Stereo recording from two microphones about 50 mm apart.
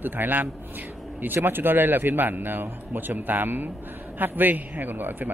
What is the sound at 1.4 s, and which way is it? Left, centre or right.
Speech, right.